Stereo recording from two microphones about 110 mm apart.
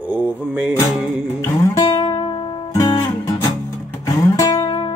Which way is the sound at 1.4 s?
35° left (ahead or behind).